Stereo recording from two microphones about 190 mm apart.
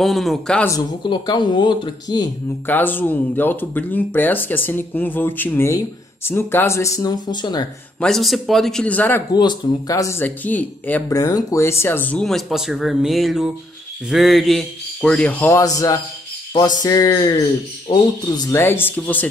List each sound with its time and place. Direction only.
0.0 s speech: centre (ahead or behind)
0.7 s speech: 20° left (ahead or behind)
2.6 s speech: 10° left (ahead or behind)
8.0 s speech: centre (ahead or behind)
9.3 s speech: 20° left (ahead or behind)